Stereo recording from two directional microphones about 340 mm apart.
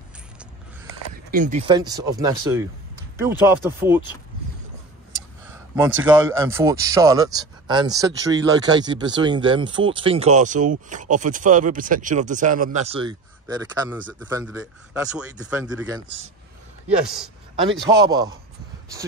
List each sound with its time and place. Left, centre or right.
1.3 s speech: right; by 4.0 s centre
6.1 s speech: centre
17.6 s speech: centre